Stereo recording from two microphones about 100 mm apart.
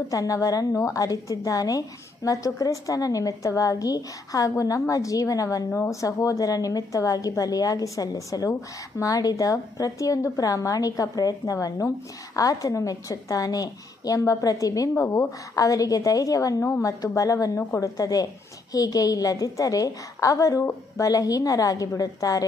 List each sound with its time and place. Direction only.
0.1 s a woman's voice: 35° left (ahead or behind)